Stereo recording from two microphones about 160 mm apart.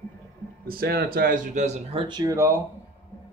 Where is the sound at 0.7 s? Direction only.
75° right (ahead or behind); by 2.6 s 15° right (ahead or behind).